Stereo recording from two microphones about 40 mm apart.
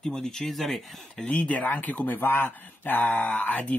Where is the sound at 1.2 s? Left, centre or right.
Left.